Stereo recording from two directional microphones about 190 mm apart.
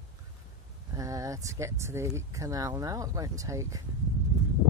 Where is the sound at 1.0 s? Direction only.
15° right (ahead or behind).